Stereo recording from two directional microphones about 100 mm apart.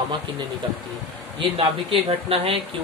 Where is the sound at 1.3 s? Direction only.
70° right (ahead or behind).